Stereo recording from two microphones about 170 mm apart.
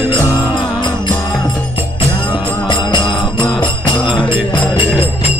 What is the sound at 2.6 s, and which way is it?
Music, 25° left (ahead or behind).